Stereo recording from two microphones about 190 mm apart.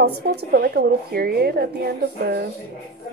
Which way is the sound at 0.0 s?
55° right (ahead or behind).